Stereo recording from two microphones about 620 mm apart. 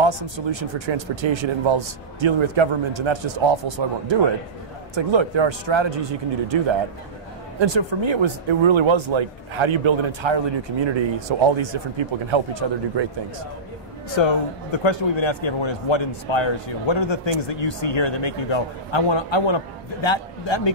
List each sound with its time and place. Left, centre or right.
0.8 s a man's voice: right
3.3 s a man's voice: right
8.0 s a man's voice: right
14.7 s a man's voice: left